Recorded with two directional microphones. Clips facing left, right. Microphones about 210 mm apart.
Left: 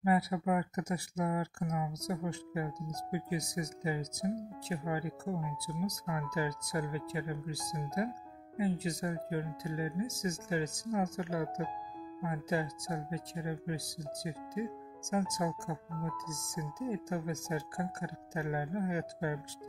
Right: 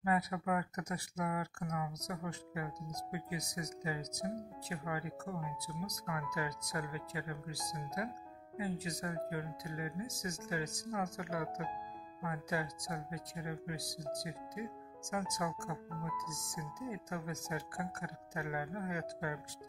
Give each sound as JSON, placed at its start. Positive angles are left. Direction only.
{"t": 0.0, "sound": "speech", "side_deg": 30}